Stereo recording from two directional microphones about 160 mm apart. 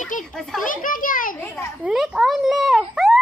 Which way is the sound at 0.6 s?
55° left (ahead or behind).